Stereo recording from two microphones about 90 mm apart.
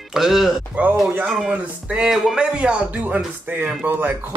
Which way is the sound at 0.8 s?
15° right (ahead or behind).